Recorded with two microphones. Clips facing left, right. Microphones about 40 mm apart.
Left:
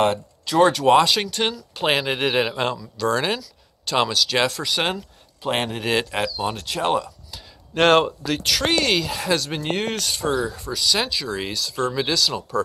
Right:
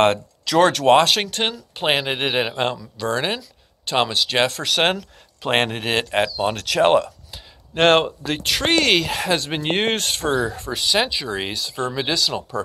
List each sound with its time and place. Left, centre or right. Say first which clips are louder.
0.0 s speech: right 3 dB; right
1.0 s speech: right 2 dB; right
1.4 s speech: even; right
4.9 s speech: right 2 dB; right
5.9 s speech: right 2 dB; right
6.5 s speech: right 5 dB; right
6.8 s speech: right 6 dB; right
7.2 s a sound: even; right
8.5 s speech: right 3 dB; right
9.3 s speech: even; right
10.9 s speech: right 2 dB; right